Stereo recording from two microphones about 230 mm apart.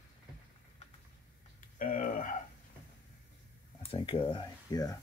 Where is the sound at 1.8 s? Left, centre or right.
Left.